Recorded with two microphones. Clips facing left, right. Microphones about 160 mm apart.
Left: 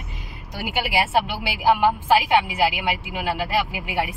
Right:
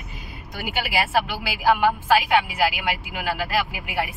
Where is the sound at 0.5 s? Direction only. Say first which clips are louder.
Left 2 dB; 20° left (ahead or behind).